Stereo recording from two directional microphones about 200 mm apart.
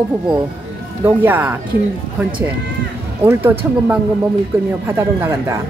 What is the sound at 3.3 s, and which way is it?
Speech, 10° right (ahead or behind).